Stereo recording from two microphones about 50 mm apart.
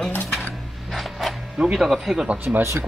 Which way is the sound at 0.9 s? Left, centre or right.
Centre.